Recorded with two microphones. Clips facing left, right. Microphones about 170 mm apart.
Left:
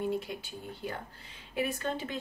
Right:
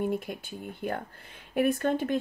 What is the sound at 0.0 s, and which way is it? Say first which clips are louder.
Speech: right 3 dB; 50° right (ahead or behind).